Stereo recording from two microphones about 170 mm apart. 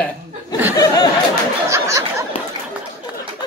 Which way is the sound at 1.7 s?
20° right (ahead or behind).